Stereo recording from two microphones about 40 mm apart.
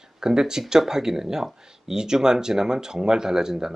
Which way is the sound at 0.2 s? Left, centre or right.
Centre.